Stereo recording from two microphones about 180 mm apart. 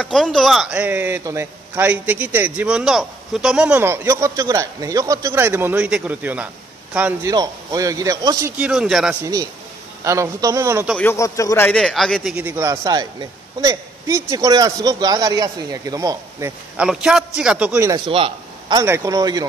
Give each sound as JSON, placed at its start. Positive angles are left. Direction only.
{"t": 0.0, "sound": "a man's voice", "side_deg": 0}
{"t": 7.3, "sound": "a man's voice", "side_deg": -20}
{"t": 9.2, "sound": "a man's voice", "side_deg": -20}
{"t": 10.9, "sound": "a man's voice", "side_deg": 10}
{"t": 16.7, "sound": "a man's voice", "side_deg": -5}
{"t": 18.0, "sound": "a man's voice", "side_deg": -30}